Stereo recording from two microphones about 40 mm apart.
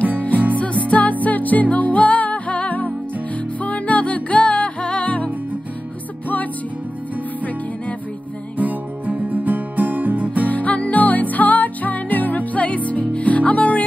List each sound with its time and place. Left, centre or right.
0.3 s music: right
0.6 s music: left
8.5 s music: right
10.5 s music: left